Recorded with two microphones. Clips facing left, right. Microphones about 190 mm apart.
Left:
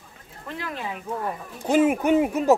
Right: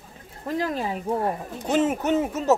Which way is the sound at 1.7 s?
10° left (ahead or behind).